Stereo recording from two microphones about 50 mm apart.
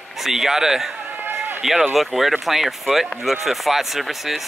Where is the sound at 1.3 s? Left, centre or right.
Right.